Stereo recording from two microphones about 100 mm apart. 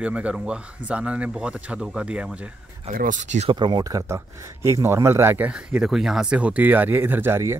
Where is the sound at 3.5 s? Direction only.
50° right (ahead or behind).